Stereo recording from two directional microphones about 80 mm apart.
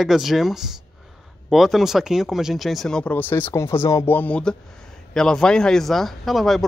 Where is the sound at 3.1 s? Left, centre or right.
Left.